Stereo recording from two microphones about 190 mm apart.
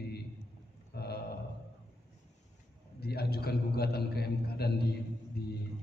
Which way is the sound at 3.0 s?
55° left (ahead or behind).